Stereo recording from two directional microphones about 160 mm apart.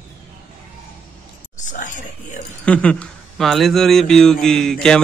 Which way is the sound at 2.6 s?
10° left (ahead or behind).